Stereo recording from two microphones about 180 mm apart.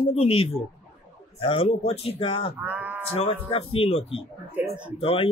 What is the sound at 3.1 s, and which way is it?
Speech, 30° left (ahead or behind).